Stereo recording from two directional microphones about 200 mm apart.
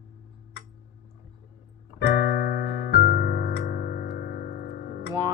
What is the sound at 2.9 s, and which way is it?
Music, 50° left (ahead or behind).